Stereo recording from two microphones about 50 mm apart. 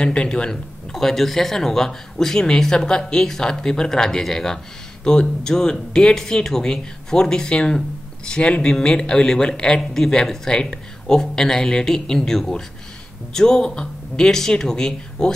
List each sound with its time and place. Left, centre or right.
0.0 s speech: left
0.9 s speech: centre